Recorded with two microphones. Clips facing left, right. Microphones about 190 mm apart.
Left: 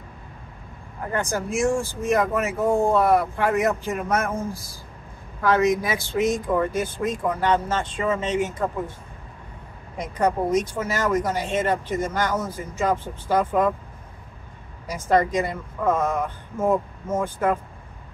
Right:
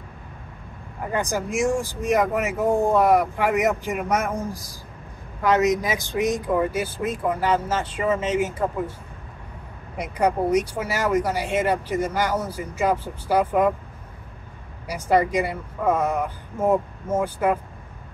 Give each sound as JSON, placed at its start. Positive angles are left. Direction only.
{"t": 1.1, "sound": "speech", "side_deg": -15}
{"t": 9.9, "sound": "speech", "side_deg": -10}
{"t": 14.9, "sound": "speech", "side_deg": -10}